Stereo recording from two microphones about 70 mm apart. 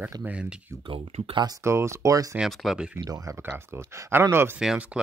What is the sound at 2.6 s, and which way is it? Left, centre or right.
Speech, centre.